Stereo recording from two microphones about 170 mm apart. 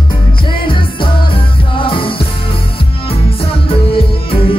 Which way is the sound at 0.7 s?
30° left (ahead or behind).